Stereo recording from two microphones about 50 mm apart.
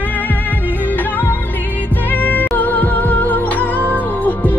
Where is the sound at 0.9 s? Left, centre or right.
Left.